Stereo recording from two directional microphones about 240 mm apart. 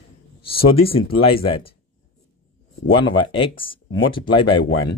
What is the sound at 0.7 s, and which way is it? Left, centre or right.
Speech, left.